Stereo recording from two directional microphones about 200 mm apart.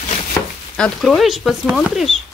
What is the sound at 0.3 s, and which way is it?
Chopping, 5° left (ahead or behind).